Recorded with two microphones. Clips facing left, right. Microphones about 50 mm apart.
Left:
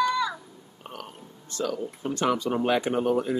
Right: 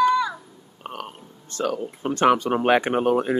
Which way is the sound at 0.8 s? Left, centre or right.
Right.